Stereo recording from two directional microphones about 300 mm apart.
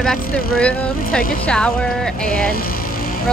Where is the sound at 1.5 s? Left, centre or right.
Centre.